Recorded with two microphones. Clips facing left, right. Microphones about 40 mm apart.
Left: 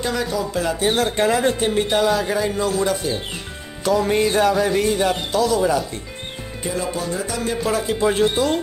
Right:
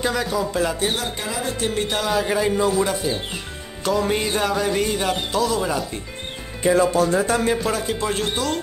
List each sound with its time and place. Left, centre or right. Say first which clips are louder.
0.0 s speech: even; centre
0.9 s speech: left 8 dB; left
1.6 s speech: left 3 dB; centre
1.9 s speech: left 4 dB; centre
2.2 s speech: right 1 dB; centre
7.1 s speech: right 6 dB; right
7.6 s speech: left 3 dB; centre